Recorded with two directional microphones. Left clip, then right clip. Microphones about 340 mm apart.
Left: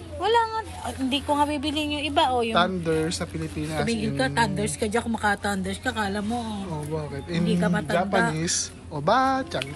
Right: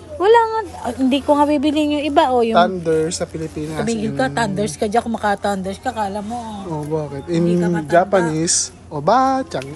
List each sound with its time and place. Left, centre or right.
0.2 s speech: right
2.5 s speech: centre
3.9 s a woman's voice: right; by 9.6 s centre